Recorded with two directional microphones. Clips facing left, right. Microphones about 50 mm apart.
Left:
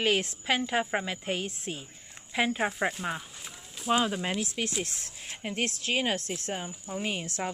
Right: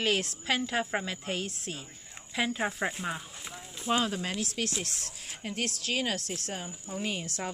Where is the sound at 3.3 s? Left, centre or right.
Centre.